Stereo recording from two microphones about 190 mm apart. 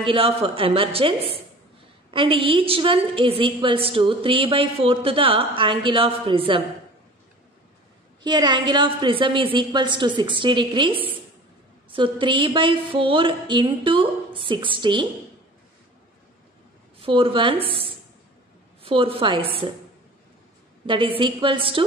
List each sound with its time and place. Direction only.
0.0 s a woman's voice: 30° right (ahead or behind)
8.2 s a woman's voice: 25° right (ahead or behind)
17.0 s a woman's voice: 30° right (ahead or behind)
18.8 s a woman's voice: 30° right (ahead or behind)
20.8 s a woman's voice: 25° right (ahead or behind)